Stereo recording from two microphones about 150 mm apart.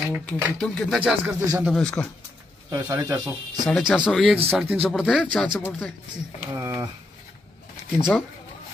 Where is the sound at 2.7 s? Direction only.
20° right (ahead or behind).